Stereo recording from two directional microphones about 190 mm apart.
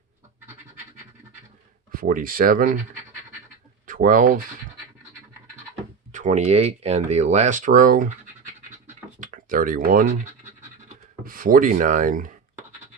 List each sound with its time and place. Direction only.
1.9 s speech: 45° right (ahead or behind)
3.8 s speech: 45° right (ahead or behind)
6.1 s speech: 35° right (ahead or behind)
9.2 s speech: 45° right (ahead or behind)